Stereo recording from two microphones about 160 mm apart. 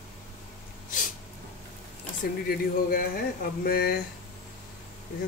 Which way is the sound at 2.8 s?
65° left (ahead or behind).